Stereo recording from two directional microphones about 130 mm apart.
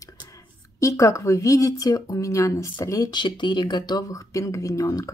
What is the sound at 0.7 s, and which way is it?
A woman's voice, 25° left (ahead or behind).